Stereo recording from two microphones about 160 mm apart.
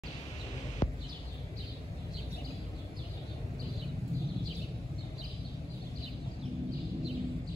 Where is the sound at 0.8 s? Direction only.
25° left (ahead or behind).